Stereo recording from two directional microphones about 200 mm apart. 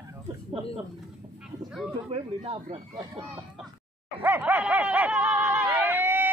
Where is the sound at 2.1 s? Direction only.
25° right (ahead or behind).